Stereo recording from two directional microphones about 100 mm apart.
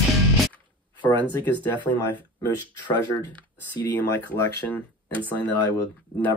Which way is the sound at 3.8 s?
25° left (ahead or behind).